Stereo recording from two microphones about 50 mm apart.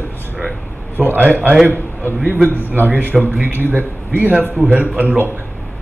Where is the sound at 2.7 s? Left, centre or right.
Right.